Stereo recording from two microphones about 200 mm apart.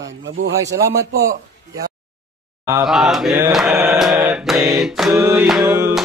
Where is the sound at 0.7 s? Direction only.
50° right (ahead or behind).